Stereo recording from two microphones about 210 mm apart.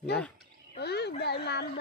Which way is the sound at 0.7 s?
50° left (ahead or behind).